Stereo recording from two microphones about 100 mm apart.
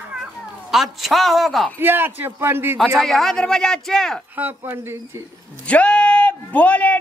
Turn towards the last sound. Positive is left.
turn(degrees=15)  # may be behind; listen again after turning